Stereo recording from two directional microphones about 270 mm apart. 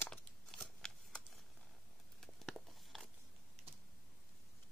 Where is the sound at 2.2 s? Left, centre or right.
Centre.